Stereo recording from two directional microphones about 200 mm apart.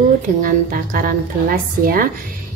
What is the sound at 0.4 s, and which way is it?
A woman's voice, 45° right (ahead or behind).